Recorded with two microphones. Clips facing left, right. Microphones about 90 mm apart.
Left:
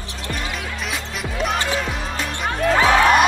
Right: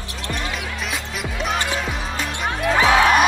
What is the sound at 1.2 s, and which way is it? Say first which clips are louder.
Music: left 2 dB; centre (ahead or behind).